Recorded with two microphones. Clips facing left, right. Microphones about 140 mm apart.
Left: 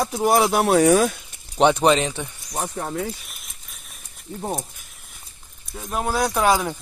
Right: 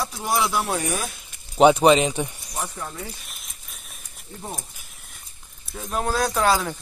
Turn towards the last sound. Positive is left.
turn(degrees=15)  # may be behind; listen again after turning